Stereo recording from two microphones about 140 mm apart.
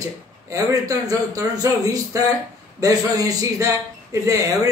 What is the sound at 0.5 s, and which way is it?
Speech, 25° right (ahead or behind).